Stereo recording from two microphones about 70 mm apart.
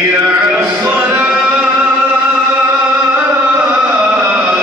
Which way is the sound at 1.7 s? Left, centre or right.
Right.